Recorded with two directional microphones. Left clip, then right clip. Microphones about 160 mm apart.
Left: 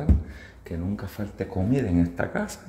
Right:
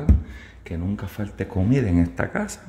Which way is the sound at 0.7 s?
20° right (ahead or behind).